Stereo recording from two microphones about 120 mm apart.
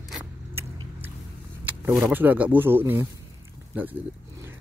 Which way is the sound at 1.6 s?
15° right (ahead or behind).